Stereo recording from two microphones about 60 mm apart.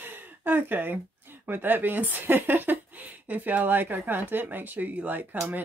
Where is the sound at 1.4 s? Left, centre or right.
Right.